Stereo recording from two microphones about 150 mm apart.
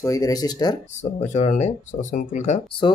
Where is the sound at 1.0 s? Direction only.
50° left (ahead or behind).